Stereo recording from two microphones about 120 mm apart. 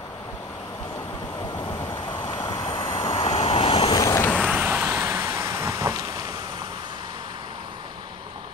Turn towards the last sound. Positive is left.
turn(degrees=-40)  # may be behind; listen again after turning